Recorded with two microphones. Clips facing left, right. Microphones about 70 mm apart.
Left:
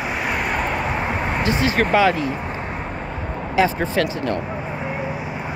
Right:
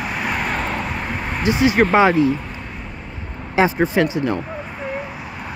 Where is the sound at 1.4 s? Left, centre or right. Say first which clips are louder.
Right 5 dB; right.